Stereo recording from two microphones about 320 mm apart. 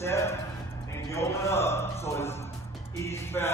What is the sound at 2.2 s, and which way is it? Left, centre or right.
Speech, centre.